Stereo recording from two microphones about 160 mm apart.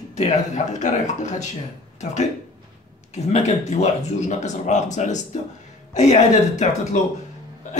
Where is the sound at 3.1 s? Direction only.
45° left (ahead or behind).